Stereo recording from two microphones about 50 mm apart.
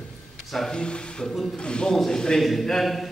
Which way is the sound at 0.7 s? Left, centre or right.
Centre.